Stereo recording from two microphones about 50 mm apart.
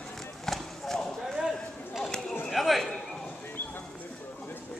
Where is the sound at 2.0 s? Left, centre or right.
Centre.